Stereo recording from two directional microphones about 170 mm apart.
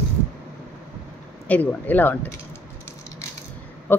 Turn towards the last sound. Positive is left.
turn(degrees=10)  # may be behind; listen again after turning